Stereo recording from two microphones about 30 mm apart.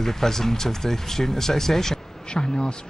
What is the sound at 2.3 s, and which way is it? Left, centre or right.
Speech, left.